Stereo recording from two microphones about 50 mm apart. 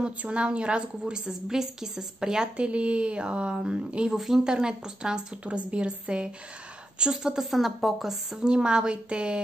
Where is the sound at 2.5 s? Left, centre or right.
Right; by 8.4 s centre.